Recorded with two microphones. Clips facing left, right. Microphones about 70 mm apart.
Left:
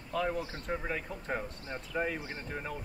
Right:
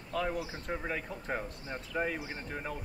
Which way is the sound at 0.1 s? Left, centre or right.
Centre.